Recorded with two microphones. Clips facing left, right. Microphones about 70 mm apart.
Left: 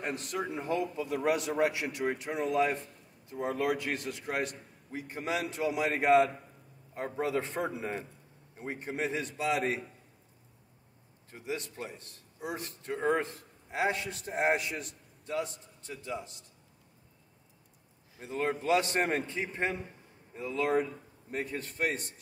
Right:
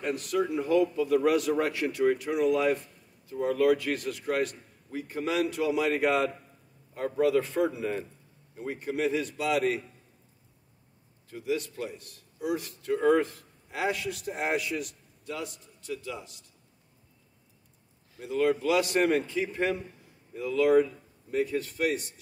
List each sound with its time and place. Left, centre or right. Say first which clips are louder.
0.0 s a man's voice: right 6 dB; left
11.2 s a man's voice: right 7 dB; left
18.2 s speech: right 6 dB; left